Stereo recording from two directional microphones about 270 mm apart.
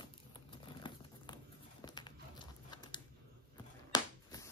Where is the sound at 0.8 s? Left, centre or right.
Centre.